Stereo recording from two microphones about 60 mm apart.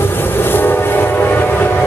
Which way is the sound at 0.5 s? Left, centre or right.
Left.